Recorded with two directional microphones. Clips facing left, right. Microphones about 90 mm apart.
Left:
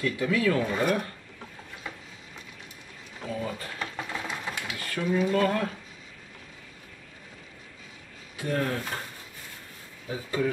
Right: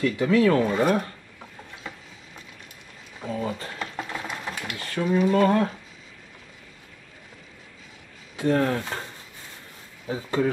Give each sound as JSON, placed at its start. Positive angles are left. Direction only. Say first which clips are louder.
{"t": 0.0, "sound": "speech", "louder": "right 6 dB", "side_deg": -30}
{"t": 0.7, "sound": "stir", "louder": "right 4 dB", "side_deg": -25}
{"t": 3.3, "sound": "a sound", "louder": "right 4 dB", "side_deg": -25}
{"t": 4.7, "sound": "stir", "louder": "right 4 dB", "side_deg": -25}
{"t": 8.4, "sound": "stir", "louder": "right 6 dB", "side_deg": -30}
{"t": 10.0, "sound": "speech", "louder": "right 4 dB", "side_deg": -30}